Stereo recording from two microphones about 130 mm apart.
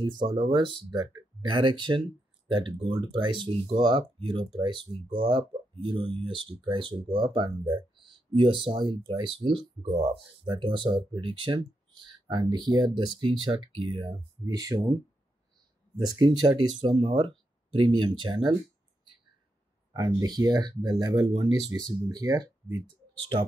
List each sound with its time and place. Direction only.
0.0 s speech: 35° right (ahead or behind)
16.0 s speech: 30° right (ahead or behind)
20.2 s speech: 30° right (ahead or behind)